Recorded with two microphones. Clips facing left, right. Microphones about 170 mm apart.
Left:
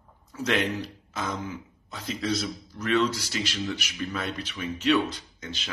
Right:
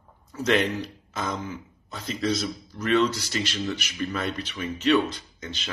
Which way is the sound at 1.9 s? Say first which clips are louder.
Right 2 dB; 5° left (ahead or behind).